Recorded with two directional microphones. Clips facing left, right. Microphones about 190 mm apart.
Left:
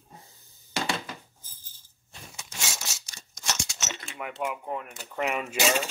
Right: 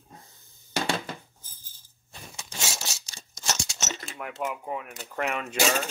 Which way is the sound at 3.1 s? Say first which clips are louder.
Right 2 dB; 30° right (ahead or behind).